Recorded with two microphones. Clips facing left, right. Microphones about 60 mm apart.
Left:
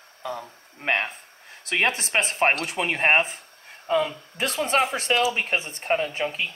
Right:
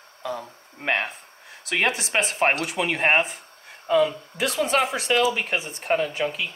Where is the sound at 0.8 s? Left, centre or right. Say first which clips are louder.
Even; left.